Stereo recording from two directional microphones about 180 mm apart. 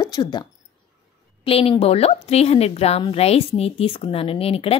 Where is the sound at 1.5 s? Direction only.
30° left (ahead or behind).